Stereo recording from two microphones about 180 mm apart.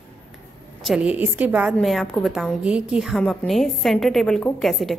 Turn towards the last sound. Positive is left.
turn(degrees=0)  # may be behind; listen again after turning